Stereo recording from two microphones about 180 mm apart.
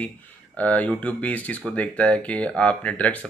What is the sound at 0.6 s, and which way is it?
Speech, 10° left (ahead or behind).